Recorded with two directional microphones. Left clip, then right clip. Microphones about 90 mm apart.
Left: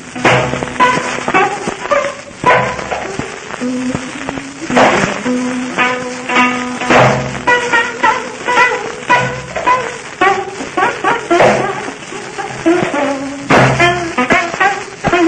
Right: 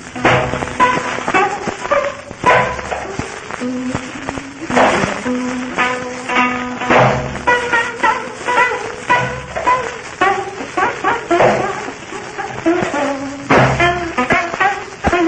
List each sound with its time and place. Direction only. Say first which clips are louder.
0.2 s music: left 2 dB; 25° left (ahead or behind)
2.4 s dog: left 1 dB; 30° left (ahead or behind)
4.7 s music: left 3 dB; 25° left (ahead or behind)
12.6 s a sound: left 3 dB; 35° left (ahead or behind)
13.5 s music: left 3 dB; 25° left (ahead or behind)